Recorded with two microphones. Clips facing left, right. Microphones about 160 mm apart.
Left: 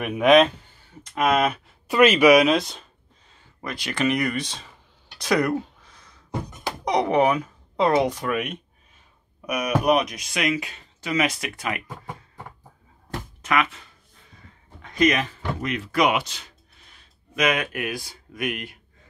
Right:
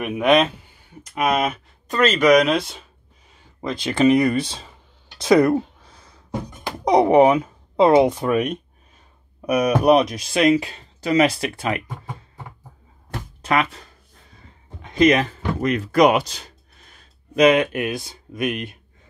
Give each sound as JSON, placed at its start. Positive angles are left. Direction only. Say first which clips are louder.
{"t": 0.0, "sound": "speech", "louder": "left 1 dB", "side_deg": 0}
{"t": 1.9, "sound": "speech", "louder": "left 1 dB", "side_deg": 10}
{"t": 3.6, "sound": "speech", "louder": "right 7 dB", "side_deg": -25}
{"t": 5.2, "sound": "a sound", "louder": "right 7 dB", "side_deg": -25}
{"t": 6.8, "sound": "speech", "louder": "right 7 dB", "side_deg": -30}
{"t": 13.4, "sound": "speech", "louder": "right 3 dB", "side_deg": -35}
{"t": 14.8, "sound": "a sound", "louder": "right 5 dB", "side_deg": -25}
{"t": 17.4, "sound": "speech", "louder": "right 8 dB", "side_deg": -25}